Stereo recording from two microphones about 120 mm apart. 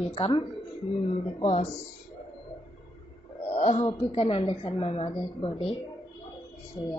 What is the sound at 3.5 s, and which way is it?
A woman's voice, 55° left (ahead or behind).